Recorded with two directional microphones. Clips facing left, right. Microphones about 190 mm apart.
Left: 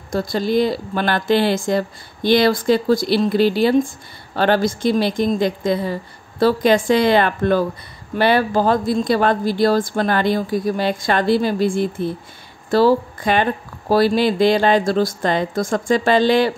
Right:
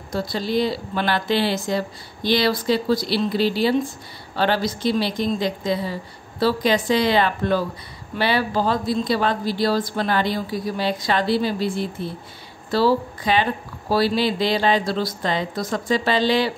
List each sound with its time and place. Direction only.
0.1 s speech: 50° left (ahead or behind)